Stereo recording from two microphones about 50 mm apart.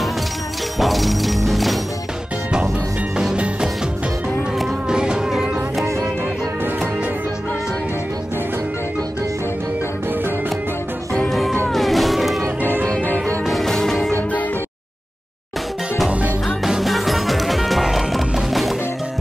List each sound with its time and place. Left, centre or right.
0.7 s music: centre
4.8 s music: centre
5.3 s music: centre
11.2 s music: centre
13.0 s music: left
13.5 s music: centre
16.6 s music: centre